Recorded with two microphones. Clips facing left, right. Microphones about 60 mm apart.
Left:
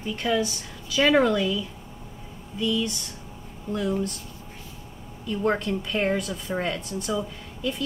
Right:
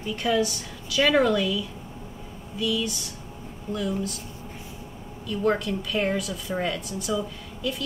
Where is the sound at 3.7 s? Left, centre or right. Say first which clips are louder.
Left 2 dB; left.